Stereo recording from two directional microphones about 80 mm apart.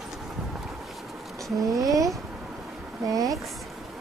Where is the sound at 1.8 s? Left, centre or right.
Right.